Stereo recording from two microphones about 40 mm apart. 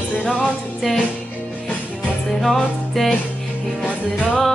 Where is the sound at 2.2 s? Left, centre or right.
Centre.